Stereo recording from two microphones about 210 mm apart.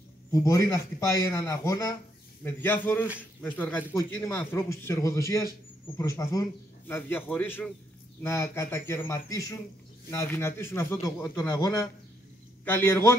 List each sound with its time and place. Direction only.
0.3 s speech: 15° left (ahead or behind)